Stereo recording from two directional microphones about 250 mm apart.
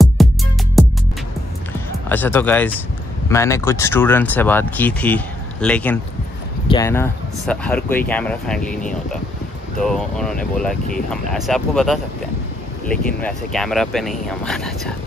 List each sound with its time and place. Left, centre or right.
0.2 s music: centre
2.0 s speech: centre
9.8 s speech: centre